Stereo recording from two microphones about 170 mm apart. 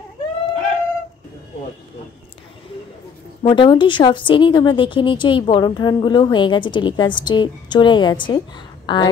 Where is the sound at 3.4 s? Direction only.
30° left (ahead or behind).